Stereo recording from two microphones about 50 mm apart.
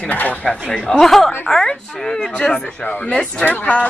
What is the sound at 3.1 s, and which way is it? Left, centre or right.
Speech, centre.